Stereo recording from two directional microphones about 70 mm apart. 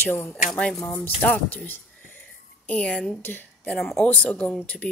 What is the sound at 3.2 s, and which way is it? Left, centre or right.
Speech, left.